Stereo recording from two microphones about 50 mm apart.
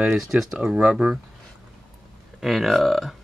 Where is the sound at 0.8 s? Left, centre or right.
Right.